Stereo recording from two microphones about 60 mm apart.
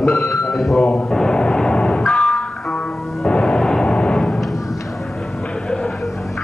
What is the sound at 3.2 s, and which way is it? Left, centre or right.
Music, centre.